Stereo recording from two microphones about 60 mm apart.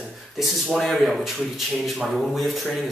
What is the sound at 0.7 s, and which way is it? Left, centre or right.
Speech, centre.